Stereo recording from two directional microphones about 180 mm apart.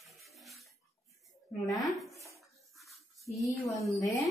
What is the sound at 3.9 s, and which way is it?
Speech, 15° left (ahead or behind).